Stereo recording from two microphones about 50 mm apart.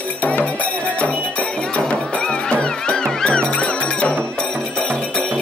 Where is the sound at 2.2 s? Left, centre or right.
Centre.